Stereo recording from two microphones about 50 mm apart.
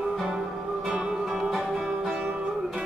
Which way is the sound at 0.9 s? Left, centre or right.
Centre.